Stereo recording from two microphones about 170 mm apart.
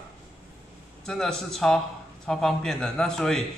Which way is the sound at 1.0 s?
Centre (ahead or behind).